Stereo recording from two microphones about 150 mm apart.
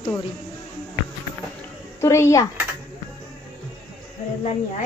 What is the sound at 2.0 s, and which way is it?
Speech, 20° left (ahead or behind).